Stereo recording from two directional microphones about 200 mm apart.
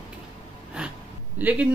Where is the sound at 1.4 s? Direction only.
10° right (ahead or behind).